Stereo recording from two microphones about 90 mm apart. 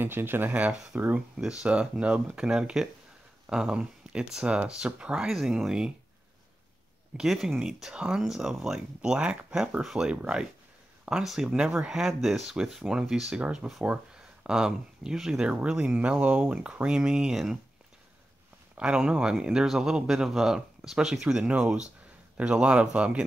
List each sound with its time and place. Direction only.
0.0 s speech: 25° right (ahead or behind); by 5.9 s 10° right (ahead or behind)
7.2 s speech: 5° right (ahead or behind)
18.8 s speech: 10° right (ahead or behind)